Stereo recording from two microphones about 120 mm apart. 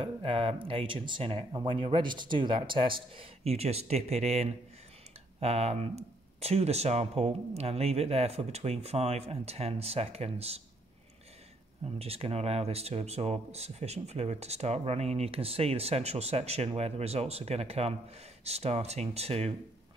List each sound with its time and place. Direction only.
0.0 s speech: 50° right (ahead or behind)
11.8 s speech: 55° right (ahead or behind)